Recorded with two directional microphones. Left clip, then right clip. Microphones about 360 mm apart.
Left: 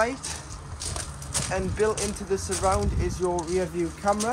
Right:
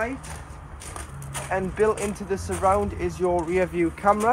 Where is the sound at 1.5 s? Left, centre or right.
Right.